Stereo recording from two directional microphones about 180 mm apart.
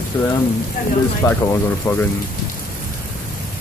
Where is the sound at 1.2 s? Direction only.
15° left (ahead or behind).